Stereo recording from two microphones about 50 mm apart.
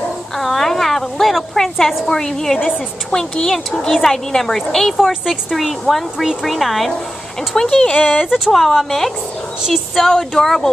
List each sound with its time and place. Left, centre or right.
0.4 s a sound: centre
2.0 s a woman's voice: centre
5.0 s a woman's voice: centre
7.9 s speech: left
8.5 s a woman's voice: centre